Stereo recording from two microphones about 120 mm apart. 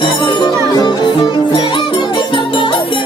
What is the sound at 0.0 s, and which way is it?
Music, 40° left (ahead or behind).